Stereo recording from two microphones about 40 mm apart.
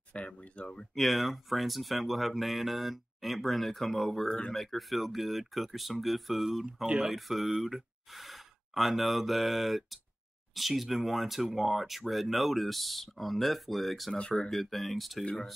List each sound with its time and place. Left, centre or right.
0.4 s speech: left
0.9 s speech: centre